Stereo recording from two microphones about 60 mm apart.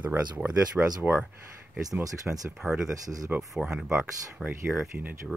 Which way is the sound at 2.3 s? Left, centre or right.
Centre.